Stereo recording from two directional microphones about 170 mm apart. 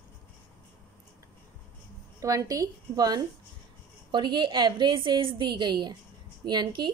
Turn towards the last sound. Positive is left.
turn(degrees=-25)  # may be behind; listen again after turning